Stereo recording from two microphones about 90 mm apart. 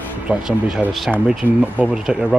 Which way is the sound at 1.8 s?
5° right (ahead or behind).